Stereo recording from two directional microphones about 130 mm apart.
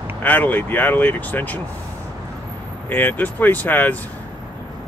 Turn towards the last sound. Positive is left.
turn(degrees=15)  # may be behind; listen again after turning